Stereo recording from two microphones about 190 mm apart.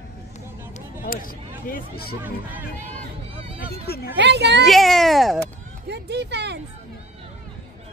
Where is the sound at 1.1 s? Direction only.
45° left (ahead or behind).